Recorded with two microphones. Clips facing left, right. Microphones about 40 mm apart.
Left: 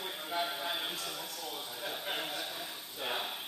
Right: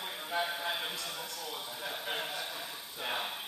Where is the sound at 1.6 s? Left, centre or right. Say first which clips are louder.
Even; centre.